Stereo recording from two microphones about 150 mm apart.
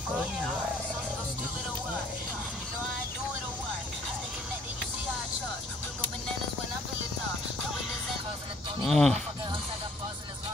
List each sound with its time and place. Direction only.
8.8 s speech: 5° left (ahead or behind)